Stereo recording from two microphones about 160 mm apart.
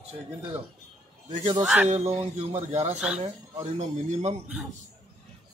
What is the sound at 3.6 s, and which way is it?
Speech, 45° right (ahead or behind).